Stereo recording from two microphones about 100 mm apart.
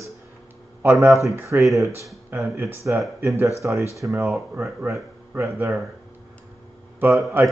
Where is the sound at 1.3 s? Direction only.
30° right (ahead or behind).